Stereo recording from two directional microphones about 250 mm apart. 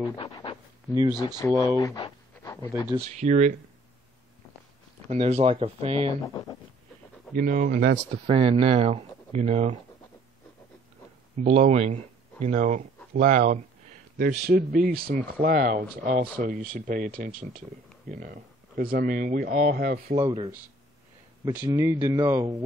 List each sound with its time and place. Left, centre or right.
0.0 s a sound: centre
0.8 s speech: centre
1.4 s speech: centre
1.8 s a sound: centre
3.1 s speech: right
5.0 s speech: right
6.2 s a sound: centre
7.3 s speech: right
11.3 s speech: right
21.5 s speech: centre